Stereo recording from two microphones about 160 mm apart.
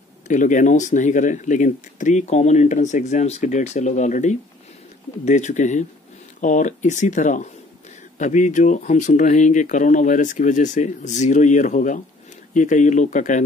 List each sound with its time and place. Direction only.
0.3 s speech: 50° left (ahead or behind)